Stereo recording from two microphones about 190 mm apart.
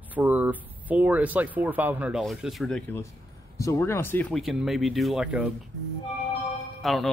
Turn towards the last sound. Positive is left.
turn(degrees=0)  # may be behind; listen again after turning